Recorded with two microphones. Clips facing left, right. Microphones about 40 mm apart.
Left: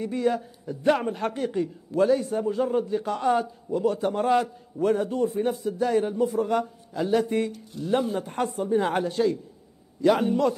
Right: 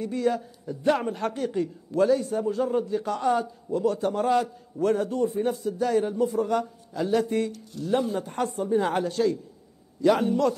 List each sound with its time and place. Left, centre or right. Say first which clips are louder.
0.0 s a man's voice: left 1 dB; centre
2.1 s a man's voice: left 1 dB; left
8.5 s a woman's voice: even; centre